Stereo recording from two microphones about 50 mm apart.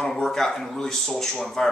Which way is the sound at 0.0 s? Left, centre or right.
Centre.